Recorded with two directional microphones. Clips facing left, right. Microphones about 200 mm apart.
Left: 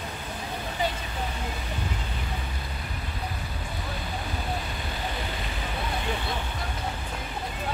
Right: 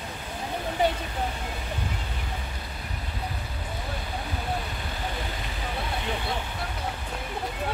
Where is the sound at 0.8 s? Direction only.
60° right (ahead or behind).